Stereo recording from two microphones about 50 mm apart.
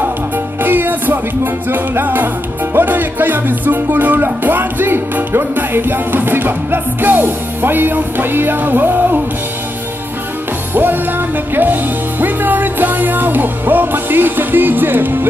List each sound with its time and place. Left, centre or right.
0.6 s music: right
10.7 s music: right